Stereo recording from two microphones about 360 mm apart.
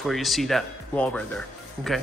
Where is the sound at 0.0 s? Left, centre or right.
Centre.